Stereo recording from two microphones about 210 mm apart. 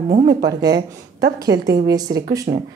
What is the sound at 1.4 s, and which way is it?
Speech, 15° right (ahead or behind).